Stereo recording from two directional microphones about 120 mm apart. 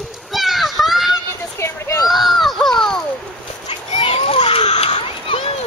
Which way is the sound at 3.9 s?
50° left (ahead or behind).